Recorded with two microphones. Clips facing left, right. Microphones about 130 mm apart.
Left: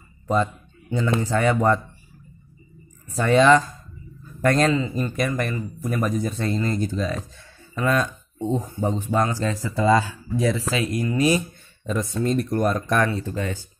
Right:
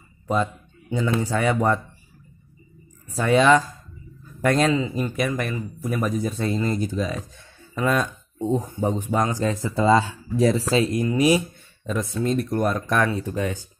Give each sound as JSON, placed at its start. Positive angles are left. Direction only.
{"t": 0.3, "sound": "speech", "side_deg": -10}
{"t": 3.2, "sound": "a man's voice", "side_deg": -5}
{"t": 11.8, "sound": "speech", "side_deg": 0}
{"t": 13.1, "sound": "speech", "side_deg": -15}